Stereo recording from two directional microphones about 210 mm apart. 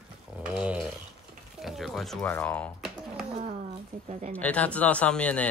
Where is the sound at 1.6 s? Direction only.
Centre (ahead or behind).